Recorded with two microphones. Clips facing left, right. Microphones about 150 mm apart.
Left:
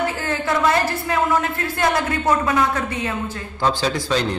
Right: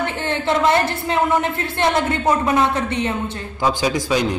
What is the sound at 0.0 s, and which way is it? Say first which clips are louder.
A man's voice: right 1 dB; 25° right (ahead or behind).